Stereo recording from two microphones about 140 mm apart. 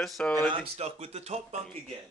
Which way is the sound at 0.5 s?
50° right (ahead or behind).